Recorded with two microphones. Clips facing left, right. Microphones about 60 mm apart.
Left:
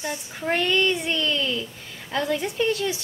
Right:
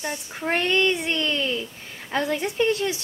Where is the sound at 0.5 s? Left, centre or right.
Right.